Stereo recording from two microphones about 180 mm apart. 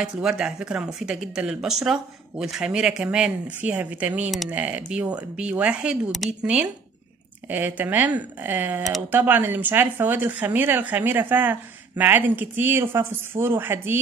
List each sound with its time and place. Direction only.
0.0 s speech: 5° right (ahead or behind)